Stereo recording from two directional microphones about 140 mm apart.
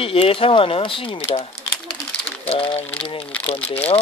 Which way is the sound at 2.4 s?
40° left (ahead or behind).